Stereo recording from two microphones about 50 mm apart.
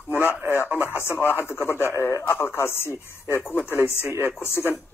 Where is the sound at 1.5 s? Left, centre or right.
Left.